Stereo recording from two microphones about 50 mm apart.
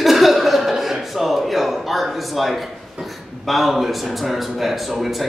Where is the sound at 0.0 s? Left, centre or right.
Centre.